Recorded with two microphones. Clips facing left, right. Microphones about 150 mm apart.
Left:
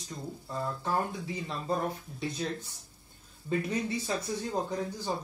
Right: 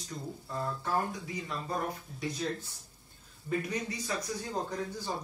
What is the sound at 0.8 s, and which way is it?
Speech, 25° left (ahead or behind).